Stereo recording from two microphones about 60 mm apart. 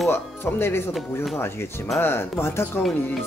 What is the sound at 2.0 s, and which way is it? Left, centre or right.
Speech, left.